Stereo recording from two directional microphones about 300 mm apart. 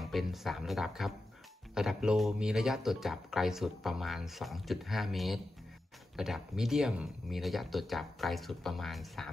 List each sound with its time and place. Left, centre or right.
0.0 s speech: centre